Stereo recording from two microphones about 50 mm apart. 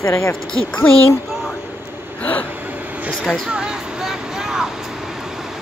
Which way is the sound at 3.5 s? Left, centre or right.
Centre.